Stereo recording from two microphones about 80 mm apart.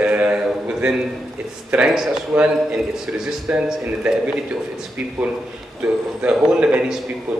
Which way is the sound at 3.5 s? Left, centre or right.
Centre.